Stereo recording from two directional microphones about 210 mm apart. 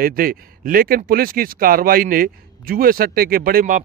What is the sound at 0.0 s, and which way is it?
Speech, 45° right (ahead or behind).